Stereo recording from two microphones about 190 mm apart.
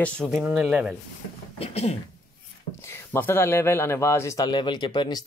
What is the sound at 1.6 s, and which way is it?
Speech, 35° left (ahead or behind).